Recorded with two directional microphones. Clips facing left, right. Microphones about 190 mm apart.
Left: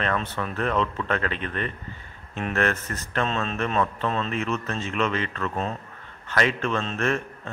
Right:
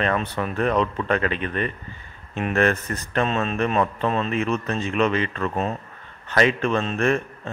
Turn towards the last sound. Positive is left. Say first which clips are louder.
# right 4 dB
turn(degrees=-15)  # may be behind; listen again after turning